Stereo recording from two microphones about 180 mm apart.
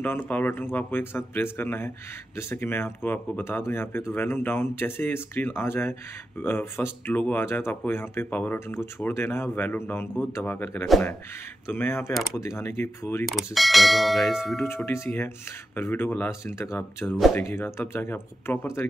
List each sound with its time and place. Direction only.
0.0 s speech: 10° left (ahead or behind)
12.1 s bell: centre (ahead or behind)
12.4 s speech: 15° left (ahead or behind)
13.3 s bell: centre (ahead or behind)
14.9 s speech: 15° left (ahead or behind)